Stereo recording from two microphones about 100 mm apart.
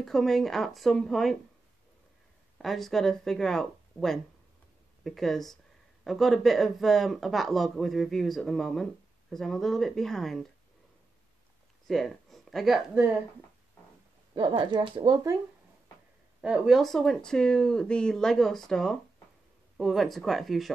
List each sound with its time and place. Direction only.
0.0 s speech: 5° left (ahead or behind)
2.6 s speech: centre (ahead or behind)
11.9 s speech: centre (ahead or behind)
14.3 s speech: 55° right (ahead or behind)
16.3 s speech: 10° right (ahead or behind)